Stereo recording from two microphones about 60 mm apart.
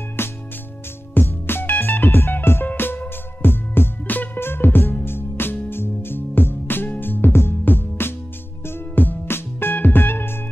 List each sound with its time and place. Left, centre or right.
0.2 s music: left